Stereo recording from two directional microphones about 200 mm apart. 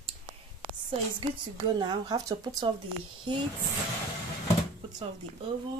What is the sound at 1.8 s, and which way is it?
Speech, 20° right (ahead or behind).